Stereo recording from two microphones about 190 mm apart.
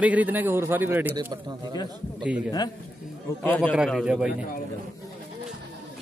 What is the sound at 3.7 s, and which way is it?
Speech, 5° right (ahead or behind).